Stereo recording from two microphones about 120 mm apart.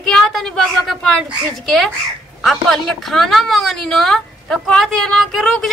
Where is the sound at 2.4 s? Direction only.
Centre (ahead or behind).